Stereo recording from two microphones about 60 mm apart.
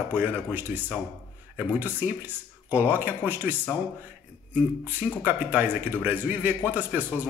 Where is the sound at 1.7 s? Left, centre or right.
Right.